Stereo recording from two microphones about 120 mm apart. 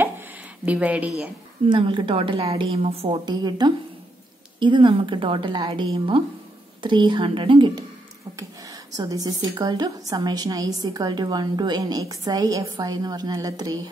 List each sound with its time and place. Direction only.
0.7 s a woman's voice: 10° right (ahead or behind)
1.7 s a woman's voice: 40° right (ahead or behind)
3.3 s a woman's voice: 35° right (ahead or behind)
8.9 s a woman's voice: 30° right (ahead or behind)